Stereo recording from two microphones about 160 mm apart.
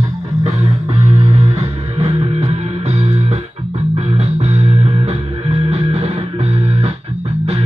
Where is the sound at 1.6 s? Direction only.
40° right (ahead or behind).